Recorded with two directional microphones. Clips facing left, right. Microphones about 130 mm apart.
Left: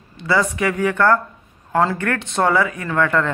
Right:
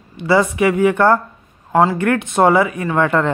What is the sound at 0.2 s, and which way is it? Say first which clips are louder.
A man's voice: right 5 dB; 20° right (ahead or behind).